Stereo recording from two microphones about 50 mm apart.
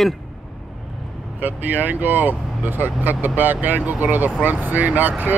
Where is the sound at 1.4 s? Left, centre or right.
Right.